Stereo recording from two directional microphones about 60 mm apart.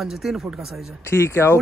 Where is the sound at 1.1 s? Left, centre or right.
Left.